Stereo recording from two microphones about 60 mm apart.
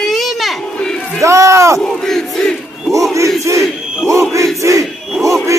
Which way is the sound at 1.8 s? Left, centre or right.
Centre.